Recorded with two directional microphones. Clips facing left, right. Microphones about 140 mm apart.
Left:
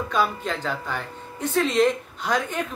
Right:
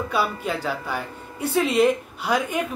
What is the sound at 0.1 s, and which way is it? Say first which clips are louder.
A woman's voice: left 1 dB; 10° right (ahead or behind).